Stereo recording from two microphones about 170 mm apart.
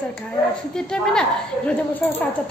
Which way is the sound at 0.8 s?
5° left (ahead or behind).